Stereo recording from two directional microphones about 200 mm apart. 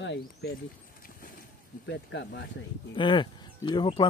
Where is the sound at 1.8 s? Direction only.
60° left (ahead or behind).